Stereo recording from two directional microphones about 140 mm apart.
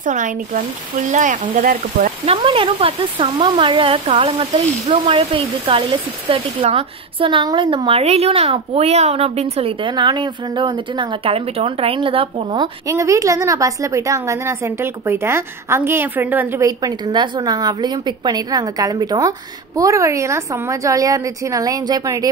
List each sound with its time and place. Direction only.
0.0 s speech: 65° right (ahead or behind); by 2.0 s 80° right
2.2 s speech: 40° right (ahead or behind)
12.8 s a woman's voice: 20° right (ahead or behind)